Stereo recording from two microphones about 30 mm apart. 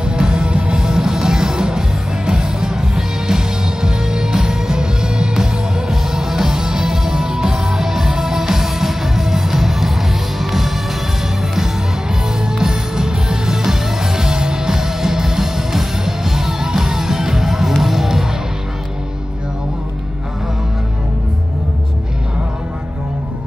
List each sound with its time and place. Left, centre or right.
0.0 s music: right
0.7 s music: right; by 10.7 s centre
12.5 s music: centre